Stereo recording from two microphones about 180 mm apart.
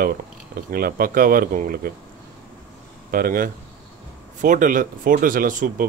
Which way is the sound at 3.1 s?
50° right (ahead or behind).